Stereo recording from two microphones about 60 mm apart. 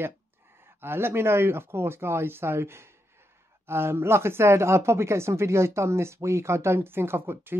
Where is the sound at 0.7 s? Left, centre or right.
Right.